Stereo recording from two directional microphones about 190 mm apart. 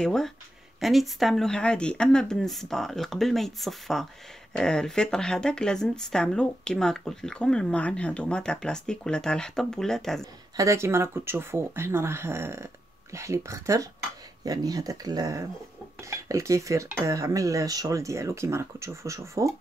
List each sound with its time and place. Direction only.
0.0 s speech: 5° left (ahead or behind)
10.5 s dishes: 15° right (ahead or behind)
14.4 s speech: 20° right (ahead or behind)
16.0 s dishes: 15° right (ahead or behind)